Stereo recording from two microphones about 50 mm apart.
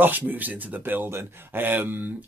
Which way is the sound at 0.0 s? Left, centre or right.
Right.